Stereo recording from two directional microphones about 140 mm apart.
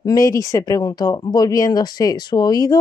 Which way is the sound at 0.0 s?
25° left (ahead or behind).